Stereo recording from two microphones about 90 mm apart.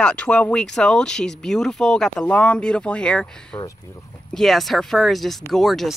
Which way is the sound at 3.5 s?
50° left (ahead or behind).